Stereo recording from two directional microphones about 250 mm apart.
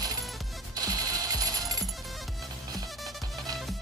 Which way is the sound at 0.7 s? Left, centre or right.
Centre.